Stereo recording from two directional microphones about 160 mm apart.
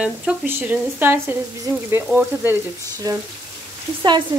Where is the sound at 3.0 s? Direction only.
20° right (ahead or behind).